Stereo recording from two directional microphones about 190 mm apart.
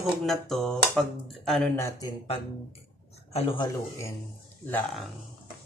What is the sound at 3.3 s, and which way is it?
Speech, 30° left (ahead or behind).